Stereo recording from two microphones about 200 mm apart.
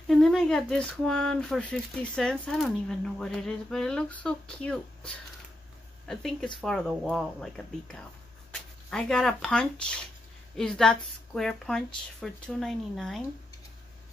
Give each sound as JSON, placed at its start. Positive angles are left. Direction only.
{"t": 0.1, "sound": "speech", "side_deg": 0}